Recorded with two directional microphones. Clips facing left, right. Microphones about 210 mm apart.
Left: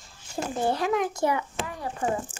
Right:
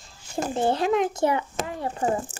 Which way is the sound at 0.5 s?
25° right (ahead or behind).